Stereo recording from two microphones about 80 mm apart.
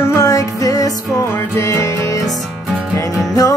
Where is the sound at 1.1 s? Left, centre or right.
Left.